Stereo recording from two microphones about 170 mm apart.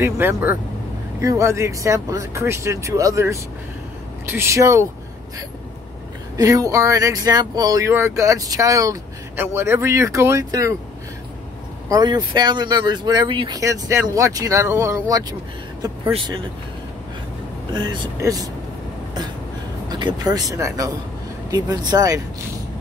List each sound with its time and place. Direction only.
0.0 s speech: 15° right (ahead or behind)
6.3 s speech: 20° right (ahead or behind)
11.9 s speech: 25° right (ahead or behind)
17.7 s speech: 25° right (ahead or behind)
19.9 s speech: 25° right (ahead or behind)